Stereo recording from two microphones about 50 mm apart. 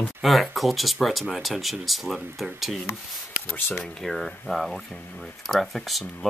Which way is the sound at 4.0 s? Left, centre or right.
Centre.